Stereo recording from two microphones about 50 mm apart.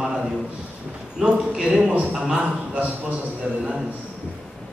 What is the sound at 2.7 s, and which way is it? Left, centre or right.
Speech, right.